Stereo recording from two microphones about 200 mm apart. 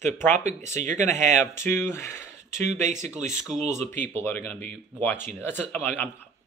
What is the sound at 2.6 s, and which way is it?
Speech, 35° right (ahead or behind).